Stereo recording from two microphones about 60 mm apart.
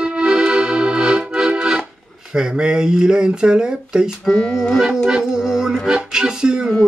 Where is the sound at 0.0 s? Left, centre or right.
Centre.